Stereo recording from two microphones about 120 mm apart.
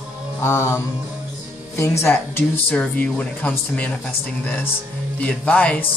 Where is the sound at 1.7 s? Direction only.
20° left (ahead or behind).